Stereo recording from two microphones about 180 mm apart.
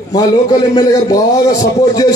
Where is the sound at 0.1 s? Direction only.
20° left (ahead or behind).